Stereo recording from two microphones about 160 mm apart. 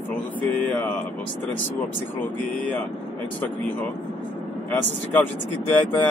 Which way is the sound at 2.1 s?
10° left (ahead or behind).